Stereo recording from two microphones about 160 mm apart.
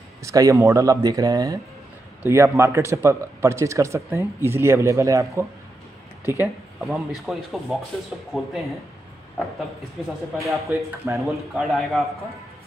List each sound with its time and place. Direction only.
0.2 s speech: 20° right (ahead or behind)
6.2 s speech: 15° right (ahead or behind)
6.8 s speech: centre (ahead or behind)
10.0 s speech: centre (ahead or behind)
11.1 s speech: 15° right (ahead or behind)
11.5 s speech: centre (ahead or behind)